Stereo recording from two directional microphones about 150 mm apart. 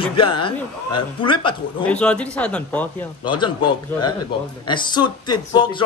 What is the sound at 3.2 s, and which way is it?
Speech, 30° left (ahead or behind).